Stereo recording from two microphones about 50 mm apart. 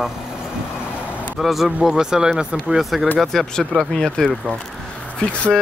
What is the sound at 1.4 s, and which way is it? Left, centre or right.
Speech, centre.